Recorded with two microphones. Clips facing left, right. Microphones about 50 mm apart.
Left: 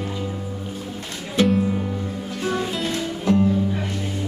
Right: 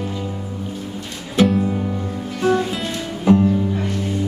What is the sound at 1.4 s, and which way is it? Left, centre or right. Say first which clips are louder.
Music: right 2 dB; centre.